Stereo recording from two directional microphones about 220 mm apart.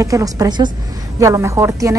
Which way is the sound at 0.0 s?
15° right (ahead or behind).